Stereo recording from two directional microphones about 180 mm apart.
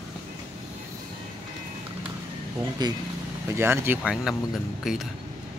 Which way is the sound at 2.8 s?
25° right (ahead or behind).